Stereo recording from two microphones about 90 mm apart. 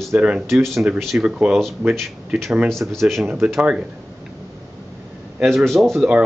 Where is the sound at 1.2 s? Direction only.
10° right (ahead or behind).